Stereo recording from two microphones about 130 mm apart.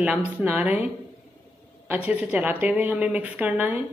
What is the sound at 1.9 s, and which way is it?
A woman's voice, 10° right (ahead or behind).